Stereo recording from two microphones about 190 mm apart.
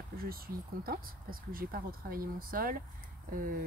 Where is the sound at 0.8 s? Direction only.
50° right (ahead or behind).